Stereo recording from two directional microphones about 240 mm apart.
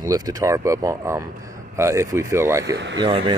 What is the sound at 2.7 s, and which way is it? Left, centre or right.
Speech, right.